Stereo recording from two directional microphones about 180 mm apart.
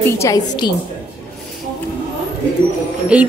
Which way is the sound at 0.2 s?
20° left (ahead or behind).